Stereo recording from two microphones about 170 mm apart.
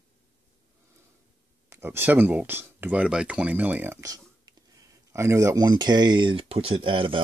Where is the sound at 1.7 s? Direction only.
15° right (ahead or behind).